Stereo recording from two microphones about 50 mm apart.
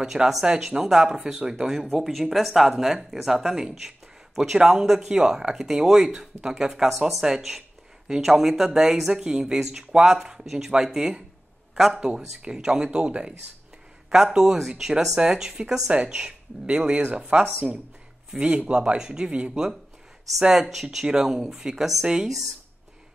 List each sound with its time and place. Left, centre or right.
0.0 s a man's voice: centre
12.4 s speech: centre
14.1 s speech: centre
20.5 s speech: centre